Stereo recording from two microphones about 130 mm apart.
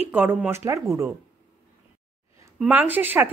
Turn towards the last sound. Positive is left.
turn(degrees=-15)  # may be behind; listen again after turning